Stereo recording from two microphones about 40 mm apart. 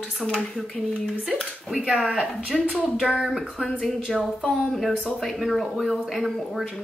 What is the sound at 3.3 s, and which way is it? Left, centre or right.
A woman's voice, centre.